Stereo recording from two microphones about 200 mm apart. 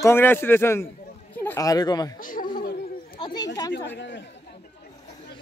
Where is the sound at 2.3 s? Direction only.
45° left (ahead or behind).